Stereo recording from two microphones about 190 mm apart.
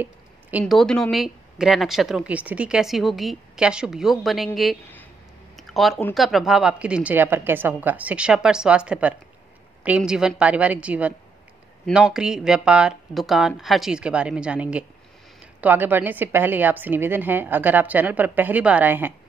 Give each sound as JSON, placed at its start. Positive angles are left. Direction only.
{"t": 0.0, "sound": "speech", "side_deg": -10}
{"t": 5.6, "sound": "a sound", "side_deg": 0}
{"t": 6.1, "sound": "a woman's voice", "side_deg": 0}